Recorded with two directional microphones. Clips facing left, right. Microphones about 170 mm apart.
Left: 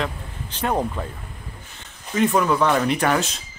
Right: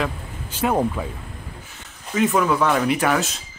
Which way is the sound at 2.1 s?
5° right (ahead or behind).